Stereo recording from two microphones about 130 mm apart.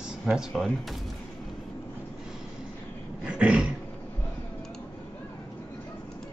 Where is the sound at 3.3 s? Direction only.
10° right (ahead or behind).